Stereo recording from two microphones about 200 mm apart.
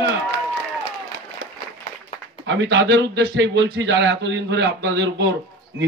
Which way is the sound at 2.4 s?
65° right (ahead or behind).